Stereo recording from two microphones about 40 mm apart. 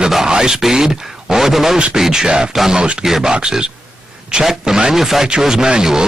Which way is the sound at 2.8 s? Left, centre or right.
Right.